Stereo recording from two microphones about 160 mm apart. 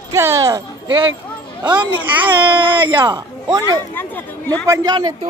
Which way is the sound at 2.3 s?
30° right (ahead or behind).